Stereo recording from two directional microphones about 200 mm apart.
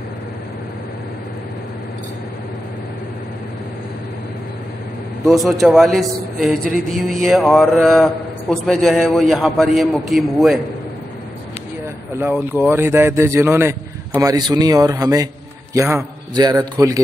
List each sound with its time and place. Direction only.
5.2 s a man's voice: centre (ahead or behind)
12.2 s a man's voice: 10° right (ahead or behind)